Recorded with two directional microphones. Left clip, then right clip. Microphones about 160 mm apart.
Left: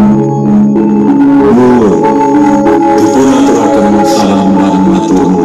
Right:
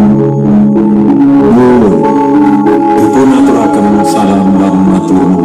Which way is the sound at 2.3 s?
15° right (ahead or behind).